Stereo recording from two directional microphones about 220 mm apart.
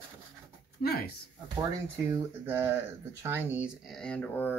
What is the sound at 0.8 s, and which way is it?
Speech, 45° left (ahead or behind).